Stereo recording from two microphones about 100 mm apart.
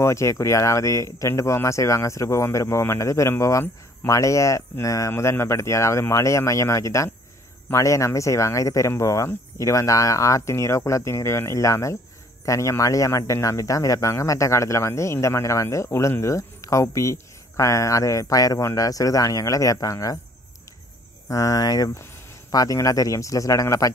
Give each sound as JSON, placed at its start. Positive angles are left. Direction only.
{"t": 0.0, "sound": "speech", "side_deg": 30}
{"t": 21.3, "sound": "speech", "side_deg": 35}